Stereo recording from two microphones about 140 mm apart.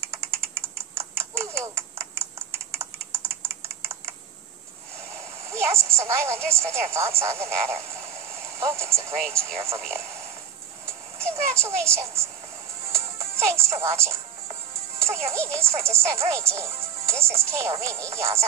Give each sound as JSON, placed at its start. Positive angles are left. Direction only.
{"t": 0.9, "sound": "typing", "side_deg": -20}
{"t": 5.5, "sound": "a child's voice", "side_deg": -20}
{"t": 12.9, "sound": "music", "side_deg": -20}
{"t": 15.0, "sound": "speech", "side_deg": -20}